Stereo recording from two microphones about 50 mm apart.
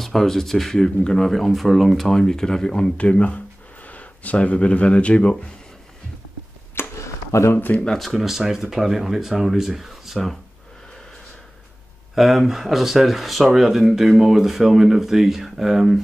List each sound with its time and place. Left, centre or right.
0.0 s speech: centre
1.2 s speech: centre
2.1 s speech: centre
3.0 s speech: left
7.0 s a sound: left
7.9 s speech: centre
12.2 s speech: centre